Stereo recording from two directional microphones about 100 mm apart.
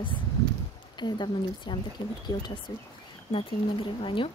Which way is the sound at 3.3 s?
60° left (ahead or behind).